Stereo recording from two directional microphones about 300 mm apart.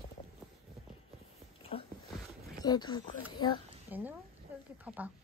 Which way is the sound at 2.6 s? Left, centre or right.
Centre.